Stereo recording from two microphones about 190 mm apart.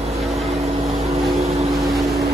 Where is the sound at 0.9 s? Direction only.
35° right (ahead or behind).